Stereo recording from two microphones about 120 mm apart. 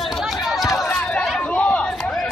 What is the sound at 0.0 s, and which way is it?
Run, centre (ahead or behind).